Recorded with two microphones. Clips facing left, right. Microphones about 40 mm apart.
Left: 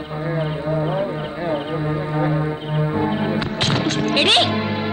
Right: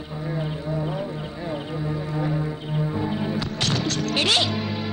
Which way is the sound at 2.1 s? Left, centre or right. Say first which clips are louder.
Left 6 dB; left.